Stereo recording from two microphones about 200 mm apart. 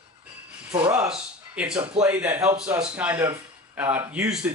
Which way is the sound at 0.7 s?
30° right (ahead or behind).